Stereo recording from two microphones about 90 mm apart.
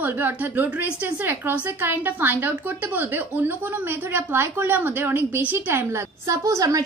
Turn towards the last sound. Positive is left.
turn(degrees=-40)  # may be behind; listen again after turning